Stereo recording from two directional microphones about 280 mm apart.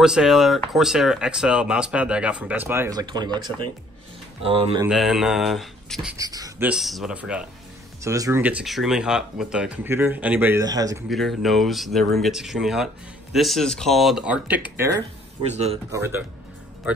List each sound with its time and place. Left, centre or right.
0.0 s speech: centre; by 4.8 s right
4.8 s speech: centre
6.1 s speech: centre
11.1 s speech: centre
15.4 s speech: right
15.9 s speech: centre